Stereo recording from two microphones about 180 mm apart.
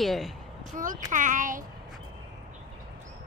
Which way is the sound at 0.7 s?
50° right (ahead or behind).